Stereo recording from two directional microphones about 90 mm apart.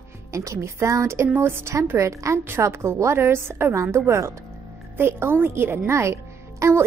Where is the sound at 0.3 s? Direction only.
35° right (ahead or behind).